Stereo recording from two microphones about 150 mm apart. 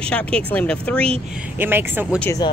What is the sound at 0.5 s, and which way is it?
Speech, 10° left (ahead or behind).